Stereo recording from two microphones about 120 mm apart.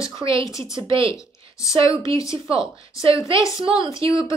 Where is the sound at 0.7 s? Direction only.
45° right (ahead or behind).